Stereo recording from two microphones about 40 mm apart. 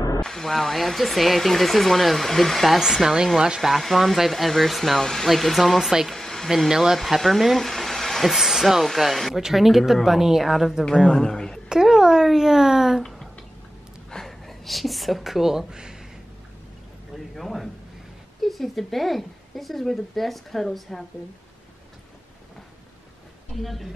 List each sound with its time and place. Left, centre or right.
0.2 s speech: centre
2.8 s speech: centre
3.6 s speech: centre
6.1 s hair dryer: centre
6.7 s speech: centre
7.0 s speech: centre
8.4 s speech: centre
11.1 s a man's voice: centre
11.7 s a sound: centre
12.3 s speech: centre
14.1 s speech: centre
17.4 s speech: centre
23.6 s speech: centre